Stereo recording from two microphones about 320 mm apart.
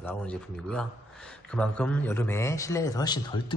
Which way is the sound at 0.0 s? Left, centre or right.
Centre.